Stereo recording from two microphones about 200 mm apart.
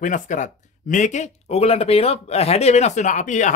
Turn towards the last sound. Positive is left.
turn(degrees=35)  # may be behind; listen again after turning